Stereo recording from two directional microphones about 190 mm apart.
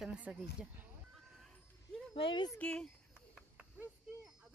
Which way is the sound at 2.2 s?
25° left (ahead or behind).